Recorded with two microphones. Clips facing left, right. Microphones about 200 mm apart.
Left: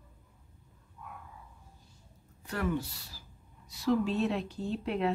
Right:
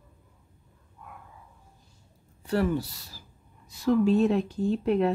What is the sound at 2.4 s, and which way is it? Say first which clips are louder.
Speech: right 7 dB; 35° right (ahead or behind).